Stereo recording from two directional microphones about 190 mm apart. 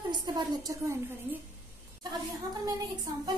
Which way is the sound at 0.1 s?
20° right (ahead or behind).